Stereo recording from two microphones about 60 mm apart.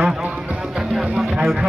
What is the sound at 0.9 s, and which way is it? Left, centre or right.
Speech, centre.